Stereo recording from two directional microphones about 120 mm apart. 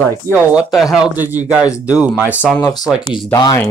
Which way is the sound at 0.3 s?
10° right (ahead or behind).